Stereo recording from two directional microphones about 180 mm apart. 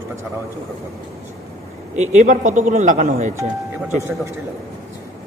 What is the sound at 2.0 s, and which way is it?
A man's voice, 40° right (ahead or behind).